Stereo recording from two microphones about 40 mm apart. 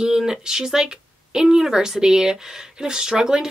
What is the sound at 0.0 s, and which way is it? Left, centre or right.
Speech, centre.